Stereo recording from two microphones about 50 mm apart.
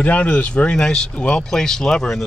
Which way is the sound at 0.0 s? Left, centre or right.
Left.